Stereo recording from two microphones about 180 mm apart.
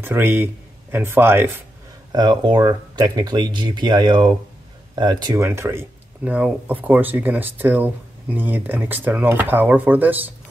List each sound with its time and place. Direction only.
0.0 s speech: 10° right (ahead or behind)
2.1 s speech: 25° right (ahead or behind)